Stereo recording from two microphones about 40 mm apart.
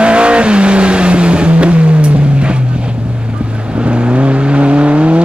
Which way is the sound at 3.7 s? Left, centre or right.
Right.